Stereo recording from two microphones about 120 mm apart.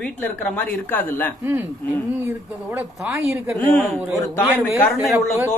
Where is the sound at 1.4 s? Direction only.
20° right (ahead or behind).